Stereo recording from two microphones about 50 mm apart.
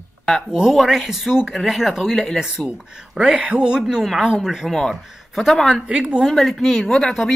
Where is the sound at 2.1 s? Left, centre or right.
Centre.